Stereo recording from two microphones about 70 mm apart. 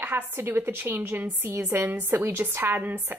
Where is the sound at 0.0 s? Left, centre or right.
Right.